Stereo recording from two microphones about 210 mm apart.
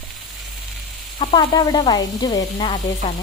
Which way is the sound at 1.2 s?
25° left (ahead or behind).